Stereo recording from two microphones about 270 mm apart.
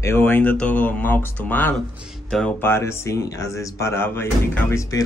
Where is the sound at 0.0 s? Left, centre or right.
Centre.